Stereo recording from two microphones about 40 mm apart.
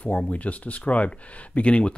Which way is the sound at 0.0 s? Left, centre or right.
Left.